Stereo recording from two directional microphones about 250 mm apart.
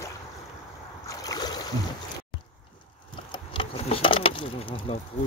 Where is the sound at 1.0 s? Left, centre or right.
Centre.